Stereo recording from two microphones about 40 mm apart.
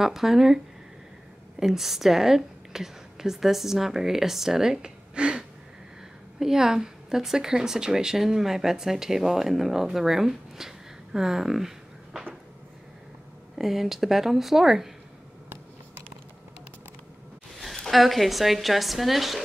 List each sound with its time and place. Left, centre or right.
0.0 s a woman's voice: centre
1.6 s a woman's voice: centre
5.1 s a sound: right
6.4 s a woman's voice: centre
11.1 s a sound: centre
13.6 s a woman's voice: centre
17.7 s speech: centre